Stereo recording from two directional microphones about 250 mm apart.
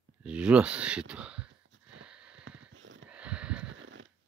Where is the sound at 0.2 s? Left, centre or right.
Centre.